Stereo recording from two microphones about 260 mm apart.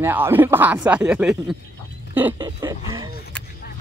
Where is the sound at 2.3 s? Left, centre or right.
Centre.